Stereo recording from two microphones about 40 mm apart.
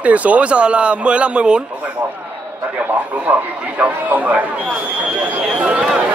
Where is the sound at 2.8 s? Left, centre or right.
Right.